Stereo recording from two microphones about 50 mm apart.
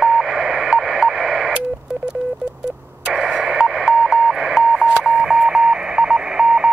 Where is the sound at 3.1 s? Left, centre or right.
Centre.